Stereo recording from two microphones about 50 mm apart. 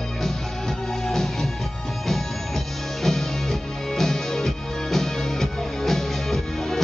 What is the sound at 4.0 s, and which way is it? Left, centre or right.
Music, centre.